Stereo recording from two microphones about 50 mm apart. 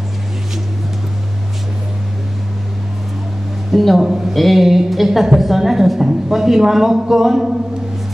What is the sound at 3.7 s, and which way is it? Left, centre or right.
A woman's voice, centre.